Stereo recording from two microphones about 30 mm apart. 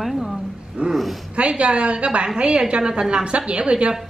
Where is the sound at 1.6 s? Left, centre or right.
Right.